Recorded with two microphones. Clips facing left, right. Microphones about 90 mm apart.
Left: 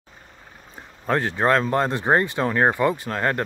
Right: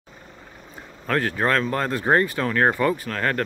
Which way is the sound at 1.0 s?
25° left (ahead or behind).